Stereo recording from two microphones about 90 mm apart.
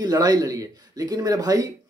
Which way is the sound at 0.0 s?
50° right (ahead or behind).